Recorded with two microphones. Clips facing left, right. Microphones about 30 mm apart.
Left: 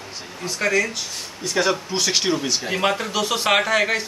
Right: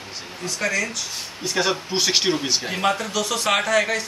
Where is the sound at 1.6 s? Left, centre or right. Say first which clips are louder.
Left 1 dB; centre.